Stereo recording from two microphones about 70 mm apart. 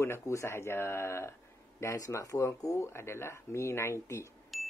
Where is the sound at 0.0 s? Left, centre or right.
Left.